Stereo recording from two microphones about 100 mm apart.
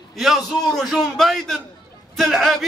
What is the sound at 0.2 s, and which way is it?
A man's voice, centre (ahead or behind).